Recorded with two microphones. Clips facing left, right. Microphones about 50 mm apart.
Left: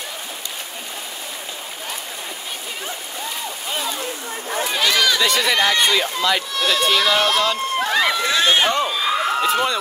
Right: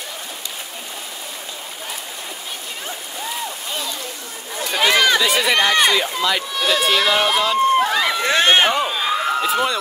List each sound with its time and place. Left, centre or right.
4.8 s run: right
5.2 s speech: centre
8.3 s speech: right
8.7 s speech: centre
9.1 s a sound: centre